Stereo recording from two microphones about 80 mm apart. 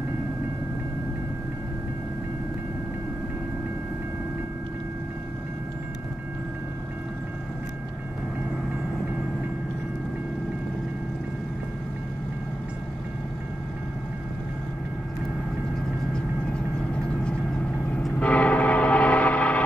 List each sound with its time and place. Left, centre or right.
18.2 s train: centre